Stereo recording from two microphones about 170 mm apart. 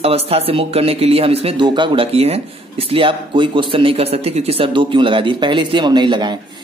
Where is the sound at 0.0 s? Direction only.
35° right (ahead or behind).